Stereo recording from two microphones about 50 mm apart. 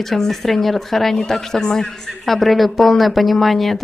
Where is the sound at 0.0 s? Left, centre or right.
Centre.